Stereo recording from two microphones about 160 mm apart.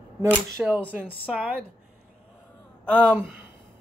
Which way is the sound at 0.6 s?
10° right (ahead or behind).